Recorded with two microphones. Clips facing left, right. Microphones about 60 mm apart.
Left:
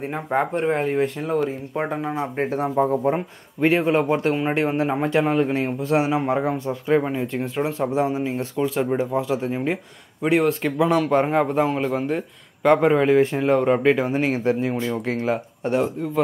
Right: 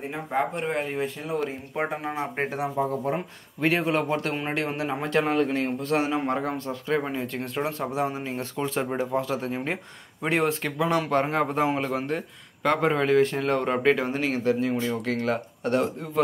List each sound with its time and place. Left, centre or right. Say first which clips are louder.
0.1 s speech: left 4 dB; left
0.7 s speech: left 6 dB; left
1.8 s speech: left 3 dB; centre
2.5 s speech: left 9 dB; left
3.6 s a man's voice: left 5 dB; centre
10.2 s a man's voice: left 5 dB; centre
14.1 s speech: left 4 dB; left
15.7 s speech: left 3 dB; centre